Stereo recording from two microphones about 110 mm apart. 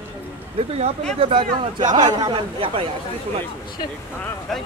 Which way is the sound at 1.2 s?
50° right (ahead or behind).